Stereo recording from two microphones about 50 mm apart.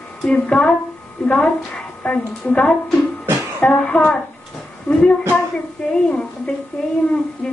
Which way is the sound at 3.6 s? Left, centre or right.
Centre.